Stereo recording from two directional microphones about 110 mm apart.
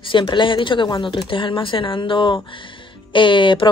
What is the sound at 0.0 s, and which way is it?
A woman's voice, 50° left (ahead or behind).